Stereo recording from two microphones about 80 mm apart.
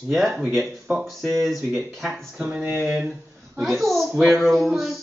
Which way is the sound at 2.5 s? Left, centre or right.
Right.